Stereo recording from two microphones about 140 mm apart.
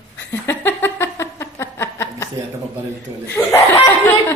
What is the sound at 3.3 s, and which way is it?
Speech, 15° left (ahead or behind).